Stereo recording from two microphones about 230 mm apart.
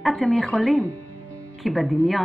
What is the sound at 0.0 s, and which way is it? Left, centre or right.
Speech, centre.